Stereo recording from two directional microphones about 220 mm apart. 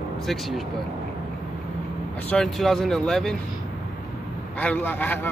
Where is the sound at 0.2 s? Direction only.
Centre (ahead or behind).